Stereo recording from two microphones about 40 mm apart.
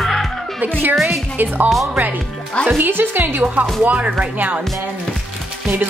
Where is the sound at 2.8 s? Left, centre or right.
Right.